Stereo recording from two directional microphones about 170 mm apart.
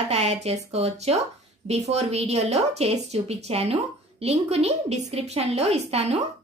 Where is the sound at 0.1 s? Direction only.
40° right (ahead or behind).